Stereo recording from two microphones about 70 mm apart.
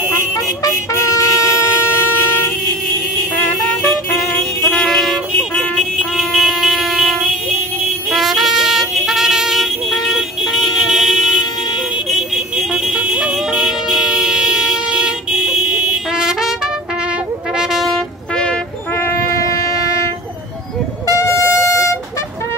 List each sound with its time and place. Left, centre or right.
0.7 s vehicle: left
4.6 s vehicle: centre
8.1 s music: centre
17.6 s music: centre
18.3 s music: centre
19.4 s shofar: left
21.1 s music: left